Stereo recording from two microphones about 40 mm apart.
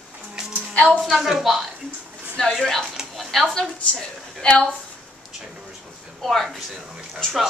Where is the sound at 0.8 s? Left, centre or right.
Left.